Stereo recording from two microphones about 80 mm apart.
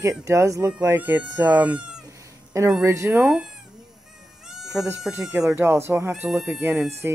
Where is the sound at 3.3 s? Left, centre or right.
Centre.